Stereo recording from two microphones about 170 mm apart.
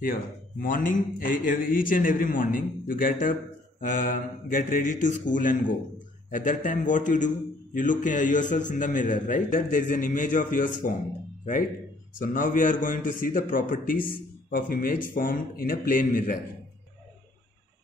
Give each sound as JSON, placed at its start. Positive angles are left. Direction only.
{"t": 0.0, "sound": "a man's voice", "side_deg": 55}
{"t": 12.2, "sound": "a man's voice", "side_deg": 55}